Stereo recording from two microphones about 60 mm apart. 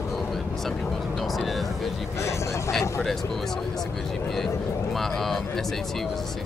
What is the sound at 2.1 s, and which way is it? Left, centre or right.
Speech, left.